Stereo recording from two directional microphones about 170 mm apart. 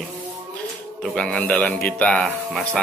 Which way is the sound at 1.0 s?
5° left (ahead or behind).